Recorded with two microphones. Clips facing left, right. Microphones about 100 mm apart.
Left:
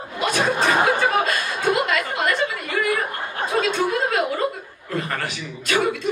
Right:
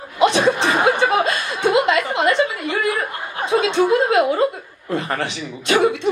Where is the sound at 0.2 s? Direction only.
25° right (ahead or behind).